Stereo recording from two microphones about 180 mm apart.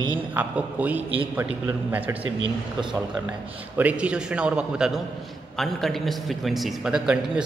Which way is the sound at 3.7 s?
10° right (ahead or behind).